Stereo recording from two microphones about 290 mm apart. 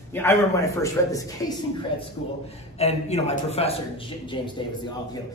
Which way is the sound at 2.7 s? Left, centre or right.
Left.